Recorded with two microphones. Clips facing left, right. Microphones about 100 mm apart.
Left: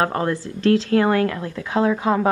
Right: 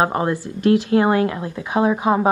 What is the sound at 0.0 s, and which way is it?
A woman's voice, 20° right (ahead or behind).